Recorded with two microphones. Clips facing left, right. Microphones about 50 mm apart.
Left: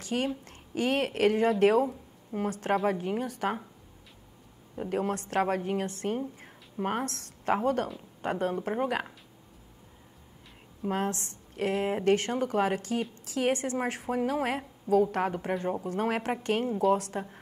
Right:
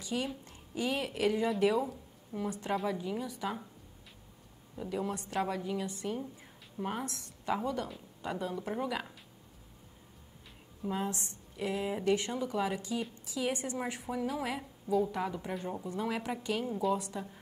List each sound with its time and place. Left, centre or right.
0.0 s a woman's voice: left
4.7 s speech: left
6.4 s a sound: left
7.5 s speech: left
10.9 s a woman's voice: left